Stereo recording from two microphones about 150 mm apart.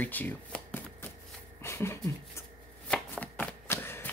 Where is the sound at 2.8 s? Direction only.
10° left (ahead or behind).